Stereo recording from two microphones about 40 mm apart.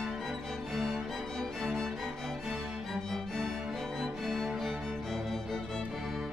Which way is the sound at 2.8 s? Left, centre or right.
Centre.